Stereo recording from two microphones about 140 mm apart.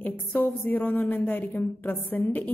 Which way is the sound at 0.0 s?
15° left (ahead or behind).